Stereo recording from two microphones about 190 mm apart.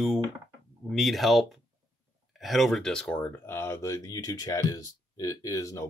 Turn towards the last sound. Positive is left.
turn(degrees=15)  # may be behind; listen again after turning